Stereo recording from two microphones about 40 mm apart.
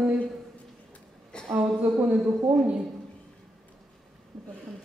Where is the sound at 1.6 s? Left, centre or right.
Right.